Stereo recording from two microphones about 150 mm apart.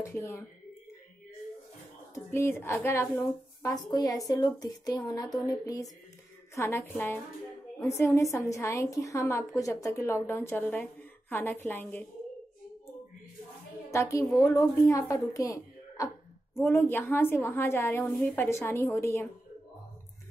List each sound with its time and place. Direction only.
0.0 s a woman's voice: 20° left (ahead or behind)
2.1 s a woman's voice: 15° left (ahead or behind)
13.8 s a woman's voice: 20° left (ahead or behind)